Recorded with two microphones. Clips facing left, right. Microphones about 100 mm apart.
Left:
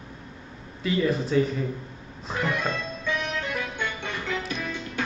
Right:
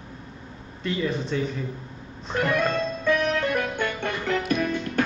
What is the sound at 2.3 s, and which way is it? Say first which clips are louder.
Music: right 4 dB; 55° right (ahead or behind).